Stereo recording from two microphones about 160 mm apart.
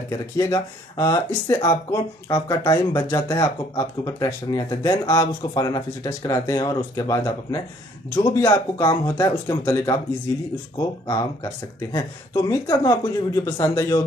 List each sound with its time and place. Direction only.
0.1 s speech: 25° left (ahead or behind)